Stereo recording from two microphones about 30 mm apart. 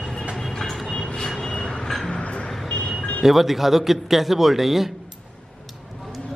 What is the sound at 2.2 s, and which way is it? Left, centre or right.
Music, left.